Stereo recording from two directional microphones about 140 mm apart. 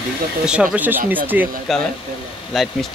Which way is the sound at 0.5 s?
5° right (ahead or behind).